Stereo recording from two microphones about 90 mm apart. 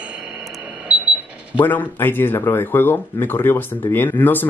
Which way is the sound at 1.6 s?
20° left (ahead or behind).